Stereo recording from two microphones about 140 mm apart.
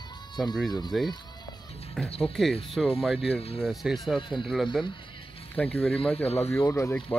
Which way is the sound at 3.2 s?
45° left (ahead or behind).